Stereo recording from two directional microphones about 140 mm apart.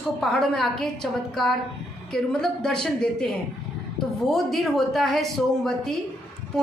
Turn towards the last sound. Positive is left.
turn(degrees=0)  # may be behind; listen again after turning